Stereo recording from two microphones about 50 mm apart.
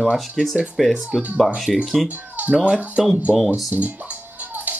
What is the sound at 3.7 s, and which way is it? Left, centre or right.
Music, right.